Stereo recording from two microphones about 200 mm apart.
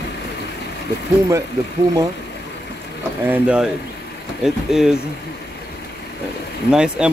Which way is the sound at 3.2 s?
5° right (ahead or behind).